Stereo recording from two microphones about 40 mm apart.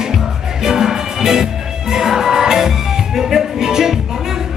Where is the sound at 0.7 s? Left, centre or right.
Centre.